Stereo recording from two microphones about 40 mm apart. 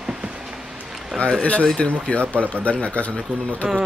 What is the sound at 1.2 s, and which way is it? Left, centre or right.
A man's voice, left.